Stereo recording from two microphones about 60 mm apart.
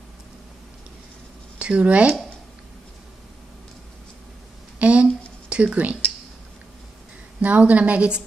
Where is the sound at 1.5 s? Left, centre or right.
Right.